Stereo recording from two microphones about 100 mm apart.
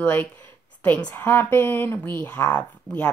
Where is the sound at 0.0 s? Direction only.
20° left (ahead or behind).